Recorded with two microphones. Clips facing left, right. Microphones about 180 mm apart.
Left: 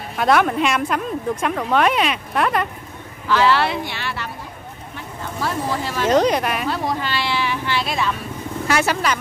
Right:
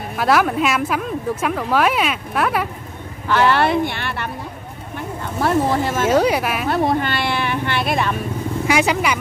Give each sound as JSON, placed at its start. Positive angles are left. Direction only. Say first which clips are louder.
{"t": 0.2, "sound": "speech", "louder": "even", "side_deg": 0}
{"t": 3.3, "sound": "speech", "louder": "right 1 dB", "side_deg": -55}
{"t": 4.9, "sound": "vehicle", "louder": "right 5 dB", "side_deg": -55}
{"t": 6.0, "sound": "speech", "louder": "left 1 dB", "side_deg": -5}
{"t": 6.7, "sound": "speech", "louder": "right 5 dB", "side_deg": -55}
{"t": 8.6, "sound": "speech", "louder": "right 2 dB", "side_deg": -10}